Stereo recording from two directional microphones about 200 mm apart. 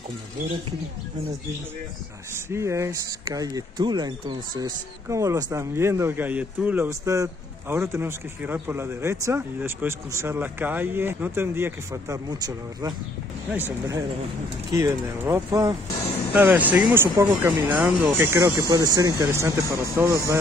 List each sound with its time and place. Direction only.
2.5 s speech: 15° right (ahead or behind)